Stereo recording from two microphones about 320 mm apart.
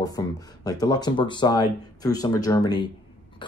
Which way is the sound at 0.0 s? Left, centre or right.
Centre.